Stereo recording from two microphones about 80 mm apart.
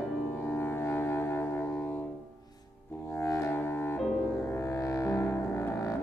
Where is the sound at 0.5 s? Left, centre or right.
Left.